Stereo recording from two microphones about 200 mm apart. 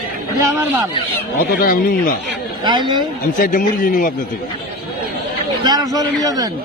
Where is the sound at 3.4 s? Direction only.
45° left (ahead or behind).